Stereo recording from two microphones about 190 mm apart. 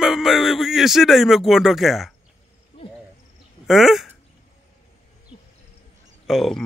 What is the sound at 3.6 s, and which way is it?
Speech, centre (ahead or behind).